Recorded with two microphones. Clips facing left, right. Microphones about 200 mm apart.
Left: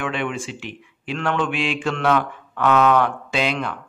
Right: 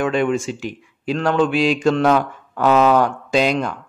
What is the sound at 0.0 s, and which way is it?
Speech, 40° right (ahead or behind).